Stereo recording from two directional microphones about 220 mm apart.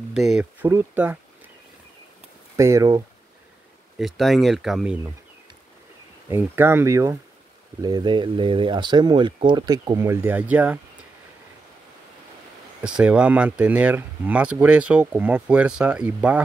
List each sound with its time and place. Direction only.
0.1 s speech: 5° right (ahead or behind)
2.5 s speech: 15° right (ahead or behind)
4.0 s speech: centre (ahead or behind)
6.2 s speech: 10° right (ahead or behind)
12.8 s speech: 5° right (ahead or behind)